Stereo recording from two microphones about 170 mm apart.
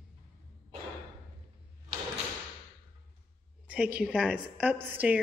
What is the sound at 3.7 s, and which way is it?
A woman's voice, 5° right (ahead or behind).